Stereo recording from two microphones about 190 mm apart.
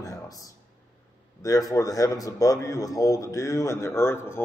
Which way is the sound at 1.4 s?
20° left (ahead or behind).